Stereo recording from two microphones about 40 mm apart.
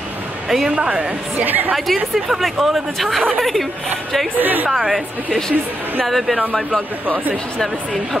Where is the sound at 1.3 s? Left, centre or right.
Right.